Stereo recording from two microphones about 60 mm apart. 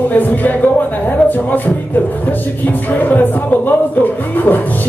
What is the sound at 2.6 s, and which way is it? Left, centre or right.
Music, left.